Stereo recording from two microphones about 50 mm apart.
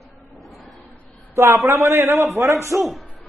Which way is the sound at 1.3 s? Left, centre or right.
Right.